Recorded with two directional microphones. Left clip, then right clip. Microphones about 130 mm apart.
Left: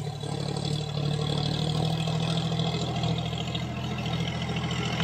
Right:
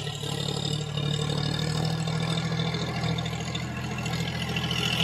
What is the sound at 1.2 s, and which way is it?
Vehicle, 15° left (ahead or behind).